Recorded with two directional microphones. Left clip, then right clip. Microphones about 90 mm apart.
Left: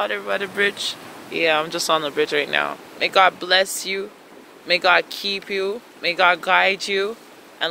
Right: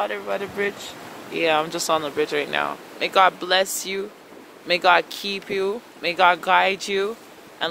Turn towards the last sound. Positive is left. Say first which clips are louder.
# left 2 dB
turn(degrees=-40)  # may be behind; listen again after turning